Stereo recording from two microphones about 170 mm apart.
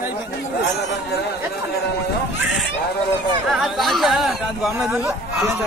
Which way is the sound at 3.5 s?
Centre (ahead or behind).